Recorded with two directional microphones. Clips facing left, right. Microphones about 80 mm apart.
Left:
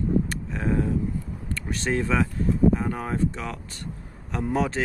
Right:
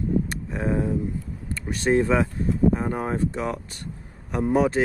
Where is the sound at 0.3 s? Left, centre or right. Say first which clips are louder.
Right 1 dB; centre.